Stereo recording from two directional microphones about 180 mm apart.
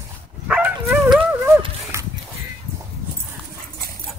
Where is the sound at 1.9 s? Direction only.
15° right (ahead or behind).